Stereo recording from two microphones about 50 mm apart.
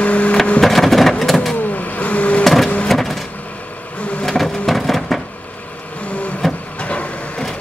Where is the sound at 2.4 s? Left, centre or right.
Centre.